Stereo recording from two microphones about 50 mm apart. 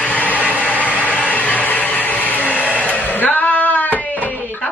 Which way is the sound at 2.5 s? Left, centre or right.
Left.